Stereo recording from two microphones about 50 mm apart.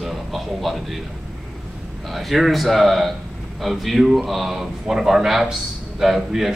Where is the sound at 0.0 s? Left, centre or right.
Centre.